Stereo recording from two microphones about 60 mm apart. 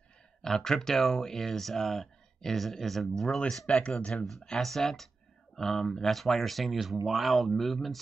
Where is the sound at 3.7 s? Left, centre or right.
Centre.